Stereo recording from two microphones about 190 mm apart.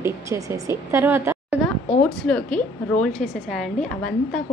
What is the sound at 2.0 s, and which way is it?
A woman's voice, 5° left (ahead or behind).